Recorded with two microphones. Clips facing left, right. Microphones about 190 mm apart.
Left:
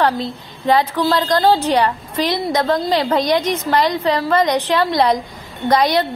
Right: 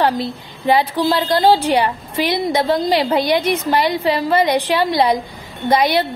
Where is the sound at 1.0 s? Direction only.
10° right (ahead or behind).